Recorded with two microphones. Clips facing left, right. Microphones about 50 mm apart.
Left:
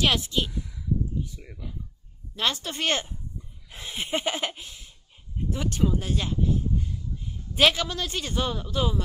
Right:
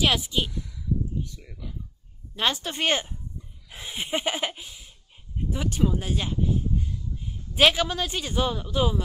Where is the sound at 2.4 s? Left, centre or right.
Centre.